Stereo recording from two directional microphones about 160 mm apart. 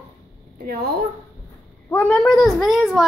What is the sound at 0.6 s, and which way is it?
Speech, 75° right (ahead or behind).